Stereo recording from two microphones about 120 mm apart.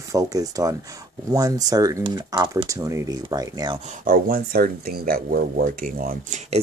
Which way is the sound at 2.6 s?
30° right (ahead or behind).